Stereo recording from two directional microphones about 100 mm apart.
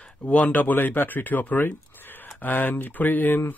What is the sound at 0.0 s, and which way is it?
Speech, 10° left (ahead or behind).